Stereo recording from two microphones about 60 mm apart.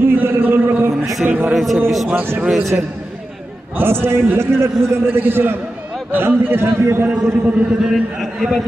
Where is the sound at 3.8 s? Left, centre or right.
Right.